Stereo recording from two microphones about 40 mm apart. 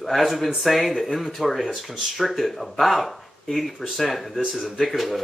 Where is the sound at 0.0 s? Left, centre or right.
Centre.